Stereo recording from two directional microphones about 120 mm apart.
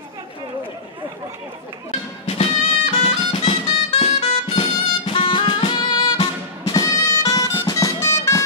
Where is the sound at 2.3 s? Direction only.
55° left (ahead or behind).